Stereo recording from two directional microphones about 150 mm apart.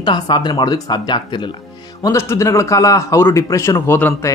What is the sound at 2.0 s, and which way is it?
Speech, 20° left (ahead or behind).